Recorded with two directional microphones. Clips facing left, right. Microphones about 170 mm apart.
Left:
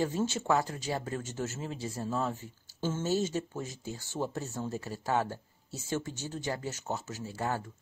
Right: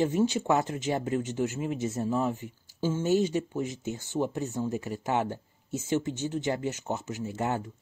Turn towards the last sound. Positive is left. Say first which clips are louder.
# right 4 dB
turn(degrees=-20)  # may be behind; listen again after turning